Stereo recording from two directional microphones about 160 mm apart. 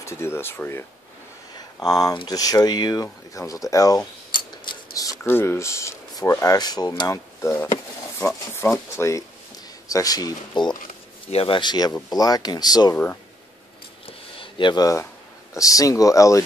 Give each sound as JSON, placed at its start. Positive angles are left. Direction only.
{"t": 0.0, "sound": "speech", "side_deg": 15}
{"t": 12.9, "sound": "speech", "side_deg": 15}
{"t": 14.0, "sound": "a sound", "side_deg": 30}
{"t": 15.5, "sound": "speech", "side_deg": 20}